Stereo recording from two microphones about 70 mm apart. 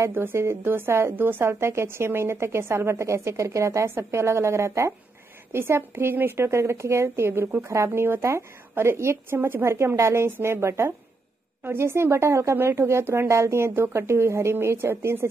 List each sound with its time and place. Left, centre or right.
0.1 s speech: right